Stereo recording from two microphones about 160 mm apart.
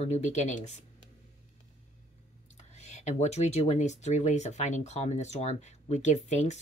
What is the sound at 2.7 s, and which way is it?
Speech, 45° left (ahead or behind).